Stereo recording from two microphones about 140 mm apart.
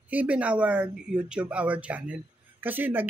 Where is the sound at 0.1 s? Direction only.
10° right (ahead or behind).